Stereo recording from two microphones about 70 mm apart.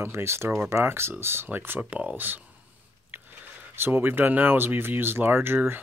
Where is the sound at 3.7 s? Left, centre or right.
Right.